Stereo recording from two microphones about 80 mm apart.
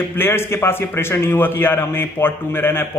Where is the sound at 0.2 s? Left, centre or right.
Left.